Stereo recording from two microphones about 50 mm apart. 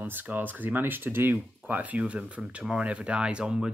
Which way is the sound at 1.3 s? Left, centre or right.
Right.